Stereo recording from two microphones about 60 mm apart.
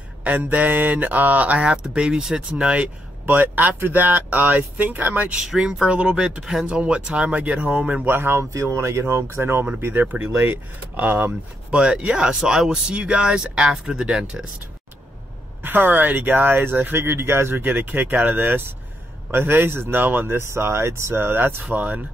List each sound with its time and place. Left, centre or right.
0.2 s speech: right
3.3 s speech: right
5.3 s speech: centre
8.0 s speech: right
8.5 s speech: right
11.7 s speech: centre
15.6 s speech: right
17.6 s speech: right